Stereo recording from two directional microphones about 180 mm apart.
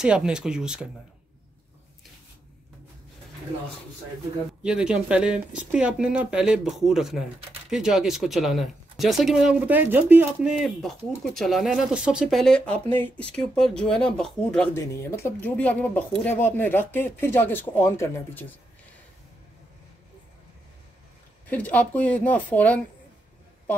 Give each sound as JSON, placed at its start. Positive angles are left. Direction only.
{"t": 0.0, "sound": "speech", "side_deg": -5}
{"t": 4.6, "sound": "speech", "side_deg": -5}
{"t": 21.5, "sound": "speech", "side_deg": 10}